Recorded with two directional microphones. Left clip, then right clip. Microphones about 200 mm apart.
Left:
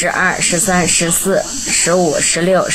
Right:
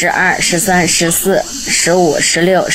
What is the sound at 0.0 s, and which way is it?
Speech, 15° right (ahead or behind).